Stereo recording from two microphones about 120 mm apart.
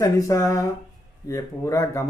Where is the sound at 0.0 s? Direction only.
25° left (ahead or behind).